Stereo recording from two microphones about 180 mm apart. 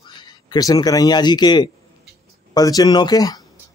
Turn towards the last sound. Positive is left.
turn(degrees=20)  # may be behind; listen again after turning